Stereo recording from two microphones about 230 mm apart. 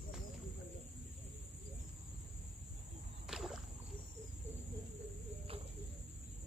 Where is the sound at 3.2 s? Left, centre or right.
Centre.